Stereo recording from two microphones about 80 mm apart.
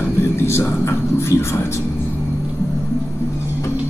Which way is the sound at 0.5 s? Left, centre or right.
Left.